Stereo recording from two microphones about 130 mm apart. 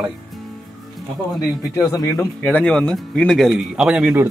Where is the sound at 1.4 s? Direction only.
30° left (ahead or behind).